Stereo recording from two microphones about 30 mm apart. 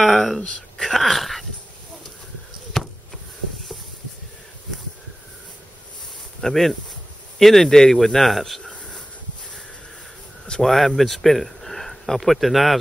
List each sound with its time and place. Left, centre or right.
0.0 s a sound: centre
0.6 s speech: left
0.9 s dog: centre
2.8 s a sound: centre
6.4 s speech: centre
10.6 s speech: centre